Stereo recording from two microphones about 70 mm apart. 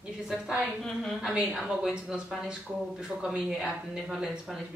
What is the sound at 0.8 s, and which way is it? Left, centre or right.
Speech, centre.